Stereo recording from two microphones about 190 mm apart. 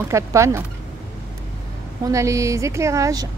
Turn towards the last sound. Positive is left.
turn(degrees=-15)  # may be behind; listen again after turning